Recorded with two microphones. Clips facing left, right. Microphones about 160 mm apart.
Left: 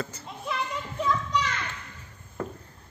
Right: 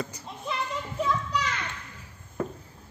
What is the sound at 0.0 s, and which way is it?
Speech, 15° right (ahead or behind).